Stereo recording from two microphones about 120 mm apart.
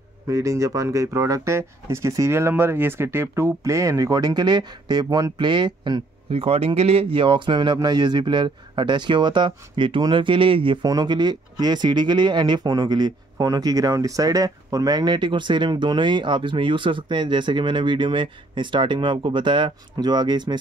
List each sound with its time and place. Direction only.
0.3 s speech: 25° right (ahead or behind)
6.3 s speech: 55° right (ahead or behind)
10.9 s speech: 35° right (ahead or behind)